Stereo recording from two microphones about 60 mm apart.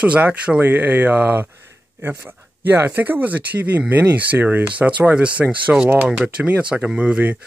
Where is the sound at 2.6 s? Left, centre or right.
Right.